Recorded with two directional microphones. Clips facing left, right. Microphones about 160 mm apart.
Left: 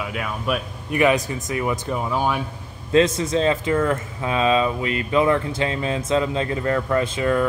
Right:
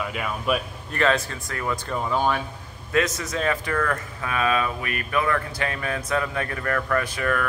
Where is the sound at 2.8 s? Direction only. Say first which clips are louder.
Left 6 dB; 25° left (ahead or behind).